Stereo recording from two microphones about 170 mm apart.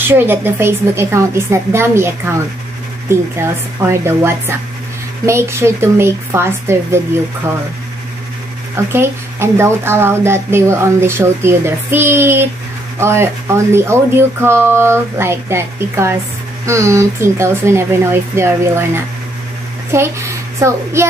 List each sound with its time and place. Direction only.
0.1 s a woman's voice: 15° right (ahead or behind)
8.7 s a woman's voice: 15° right (ahead or behind)